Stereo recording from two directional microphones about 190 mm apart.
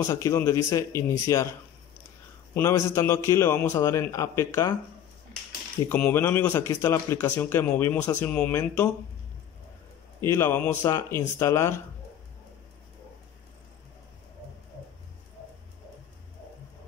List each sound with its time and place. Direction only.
0.0 s speech: 15° left (ahead or behind)
2.5 s speech: 15° left (ahead or behind)
5.9 s speech: 10° left (ahead or behind)
10.2 s speech: 15° left (ahead or behind)